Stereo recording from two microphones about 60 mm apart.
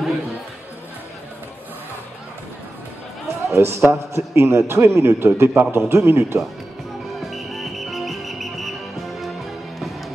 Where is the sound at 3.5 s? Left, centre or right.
Right.